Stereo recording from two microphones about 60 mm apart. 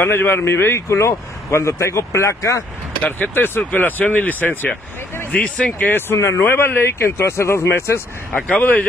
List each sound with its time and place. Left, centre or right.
0.0 s speech: left
3.0 s speech: left
5.9 s speech: left
8.4 s speech: left